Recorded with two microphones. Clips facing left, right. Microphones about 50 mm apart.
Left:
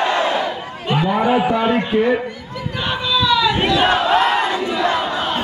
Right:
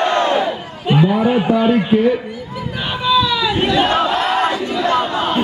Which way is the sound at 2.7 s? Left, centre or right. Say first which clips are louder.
Right 4 dB; centre.